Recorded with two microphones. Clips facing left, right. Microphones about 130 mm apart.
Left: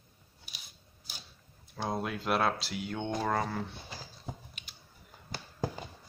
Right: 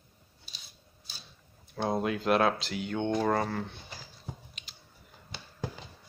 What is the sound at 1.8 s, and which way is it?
Speech, centre (ahead or behind).